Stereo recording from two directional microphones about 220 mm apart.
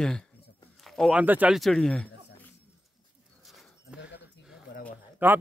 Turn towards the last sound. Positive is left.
turn(degrees=-10)  # may be behind; listen again after turning